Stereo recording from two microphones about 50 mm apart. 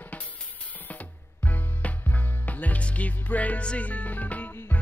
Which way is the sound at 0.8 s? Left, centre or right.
Left.